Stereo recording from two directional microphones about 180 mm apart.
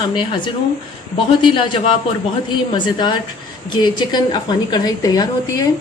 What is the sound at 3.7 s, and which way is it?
A woman's voice, 25° left (ahead or behind).